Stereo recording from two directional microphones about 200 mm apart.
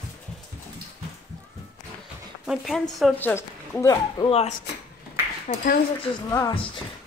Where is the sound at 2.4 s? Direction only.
Centre (ahead or behind); by 4.4 s 20° left (ahead or behind).